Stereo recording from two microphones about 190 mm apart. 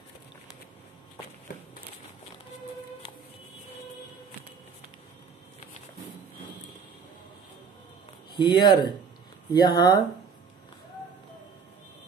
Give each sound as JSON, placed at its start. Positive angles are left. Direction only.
{"t": 8.4, "sound": "speech", "side_deg": 25}